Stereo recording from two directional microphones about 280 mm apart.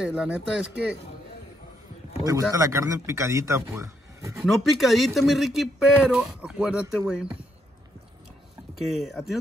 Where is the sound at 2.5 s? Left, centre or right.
Centre.